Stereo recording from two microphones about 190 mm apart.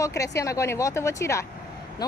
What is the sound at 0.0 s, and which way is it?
Speech, 15° left (ahead or behind).